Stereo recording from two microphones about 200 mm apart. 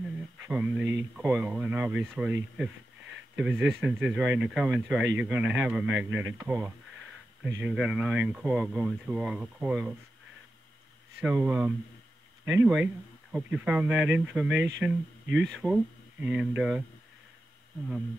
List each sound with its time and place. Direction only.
0.4 s a sound: 10° right (ahead or behind)
1.1 s a man's voice: 5° right (ahead or behind)
11.3 s a man's voice: 5° right (ahead or behind)
14.6 s speech: 65° right (ahead or behind)
15.5 s speech: centre (ahead or behind)